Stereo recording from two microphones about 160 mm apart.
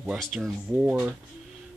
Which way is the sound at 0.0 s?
Centre (ahead or behind).